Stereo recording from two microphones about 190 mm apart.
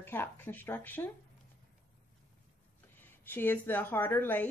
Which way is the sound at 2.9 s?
10° left (ahead or behind).